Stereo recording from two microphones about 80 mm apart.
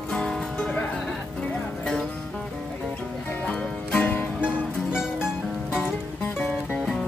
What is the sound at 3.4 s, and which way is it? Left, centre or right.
Music, centre.